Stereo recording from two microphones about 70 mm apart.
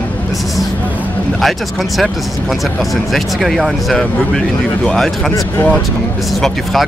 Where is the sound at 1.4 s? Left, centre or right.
Centre.